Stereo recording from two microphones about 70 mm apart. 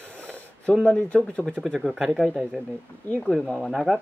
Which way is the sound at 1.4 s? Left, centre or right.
Centre.